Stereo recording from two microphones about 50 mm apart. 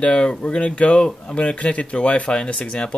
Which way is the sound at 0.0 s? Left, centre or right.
Centre.